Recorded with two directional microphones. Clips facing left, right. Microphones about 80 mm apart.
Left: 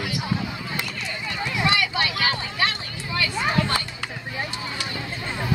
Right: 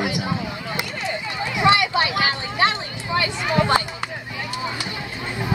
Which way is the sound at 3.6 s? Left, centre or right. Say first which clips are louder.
Right 9 dB; right.